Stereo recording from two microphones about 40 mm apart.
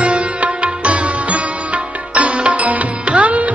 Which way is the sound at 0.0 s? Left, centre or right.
Right.